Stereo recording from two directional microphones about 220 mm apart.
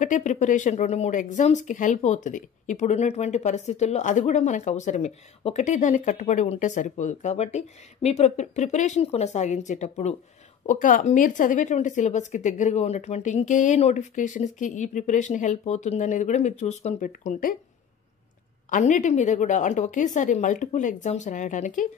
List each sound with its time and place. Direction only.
0.0 s speech: 35° left (ahead or behind)
18.7 s speech: 35° left (ahead or behind)